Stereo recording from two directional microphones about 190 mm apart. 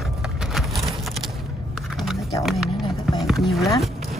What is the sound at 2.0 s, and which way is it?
Music, centre (ahead or behind).